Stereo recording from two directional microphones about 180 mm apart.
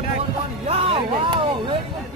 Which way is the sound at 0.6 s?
30° right (ahead or behind).